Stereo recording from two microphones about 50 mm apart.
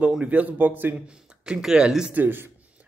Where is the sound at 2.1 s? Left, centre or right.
Right.